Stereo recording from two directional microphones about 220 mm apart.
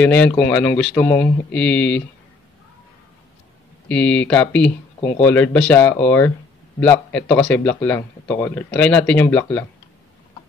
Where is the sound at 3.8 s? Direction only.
5° left (ahead or behind).